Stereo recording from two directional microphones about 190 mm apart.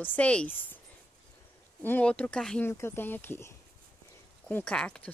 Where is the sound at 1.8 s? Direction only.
10° left (ahead or behind).